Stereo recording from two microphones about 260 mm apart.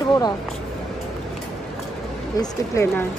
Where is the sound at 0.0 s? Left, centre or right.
Centre.